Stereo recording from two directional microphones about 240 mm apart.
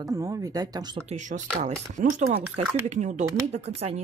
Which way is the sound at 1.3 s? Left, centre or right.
Right.